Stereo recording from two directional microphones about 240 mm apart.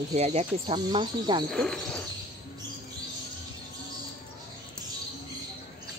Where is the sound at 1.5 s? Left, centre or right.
Centre.